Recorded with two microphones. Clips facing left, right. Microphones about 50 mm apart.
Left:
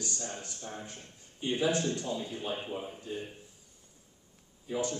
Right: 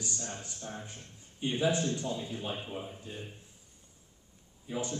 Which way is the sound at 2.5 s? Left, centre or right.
Centre.